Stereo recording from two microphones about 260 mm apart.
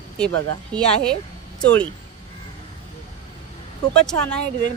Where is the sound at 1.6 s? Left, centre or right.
Centre.